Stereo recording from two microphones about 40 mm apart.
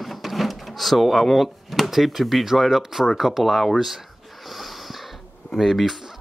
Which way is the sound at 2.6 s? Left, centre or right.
Centre.